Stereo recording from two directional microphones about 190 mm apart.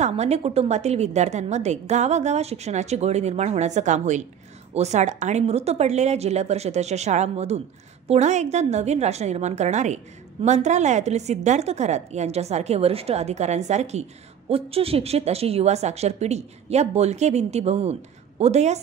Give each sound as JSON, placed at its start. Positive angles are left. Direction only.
{"t": 0.0, "sound": "a woman's voice", "side_deg": -35}